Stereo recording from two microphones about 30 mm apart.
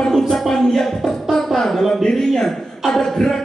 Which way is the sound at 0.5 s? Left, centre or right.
Centre.